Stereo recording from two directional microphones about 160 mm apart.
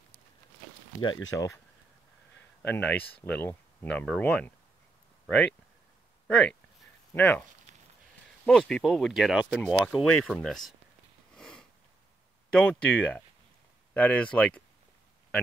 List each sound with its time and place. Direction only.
1.0 s speech: 25° left (ahead or behind)
2.6 s speech: 10° left (ahead or behind)
6.2 s speech: 5° left (ahead or behind)
8.5 s speech: 5° left (ahead or behind)
11.3 s sniff: 5° left (ahead or behind)
12.4 s speech: 5° left (ahead or behind)